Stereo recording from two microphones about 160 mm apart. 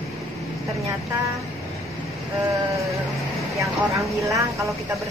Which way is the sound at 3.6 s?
20° right (ahead or behind).